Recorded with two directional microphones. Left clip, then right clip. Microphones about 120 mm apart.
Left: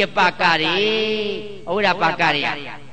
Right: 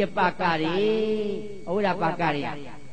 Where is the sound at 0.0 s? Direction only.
35° right (ahead or behind).